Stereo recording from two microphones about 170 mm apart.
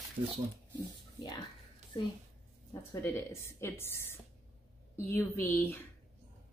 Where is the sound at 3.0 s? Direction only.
15° left (ahead or behind).